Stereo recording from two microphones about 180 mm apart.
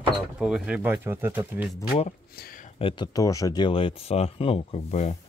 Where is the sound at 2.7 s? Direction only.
25° left (ahead or behind).